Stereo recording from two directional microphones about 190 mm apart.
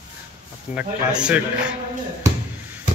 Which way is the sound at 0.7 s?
5° right (ahead or behind).